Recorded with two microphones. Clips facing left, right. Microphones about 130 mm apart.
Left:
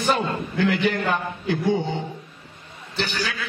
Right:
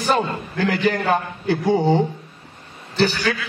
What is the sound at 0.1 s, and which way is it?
A man's voice, 35° right (ahead or behind).